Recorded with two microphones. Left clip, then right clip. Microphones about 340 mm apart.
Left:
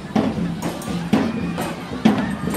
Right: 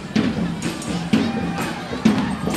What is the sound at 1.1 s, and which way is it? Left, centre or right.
Music, left.